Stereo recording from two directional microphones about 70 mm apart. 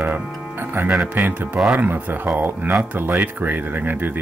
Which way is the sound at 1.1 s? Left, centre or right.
Right.